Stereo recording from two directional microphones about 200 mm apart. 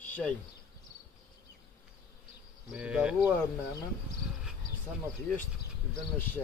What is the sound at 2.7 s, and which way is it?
Cricket, 5° right (ahead or behind).